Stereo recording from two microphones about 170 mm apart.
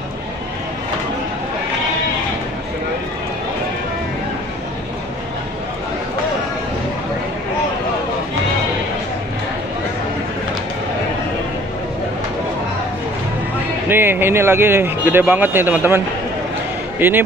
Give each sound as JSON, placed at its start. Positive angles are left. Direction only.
{"t": 13.8, "sound": "speech", "side_deg": -15}
{"t": 17.0, "sound": "speech", "side_deg": -15}